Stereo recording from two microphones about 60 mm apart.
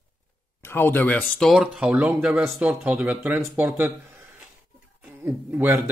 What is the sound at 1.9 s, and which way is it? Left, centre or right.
Speech, right.